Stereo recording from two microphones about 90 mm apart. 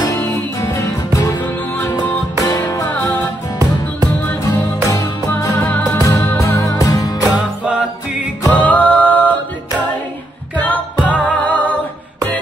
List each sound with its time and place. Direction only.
0.3 s music: 35° left (ahead or behind)
5.6 s music: 15° left (ahead or behind)
5.9 s music: 35° left (ahead or behind)
8.5 s a capella: 15° left (ahead or behind)
10.6 s music: 15° left (ahead or behind)